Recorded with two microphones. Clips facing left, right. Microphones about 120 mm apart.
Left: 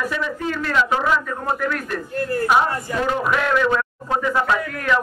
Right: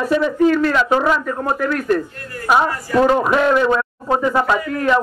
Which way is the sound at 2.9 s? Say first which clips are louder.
Right 8 dB; 20° left (ahead or behind).